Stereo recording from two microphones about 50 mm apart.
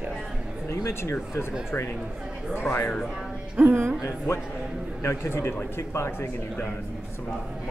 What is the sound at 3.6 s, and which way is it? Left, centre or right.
Speech, right.